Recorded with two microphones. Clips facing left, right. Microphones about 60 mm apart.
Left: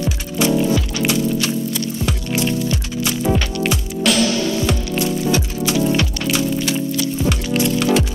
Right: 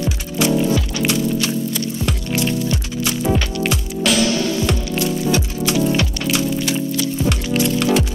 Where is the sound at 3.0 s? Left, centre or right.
Centre.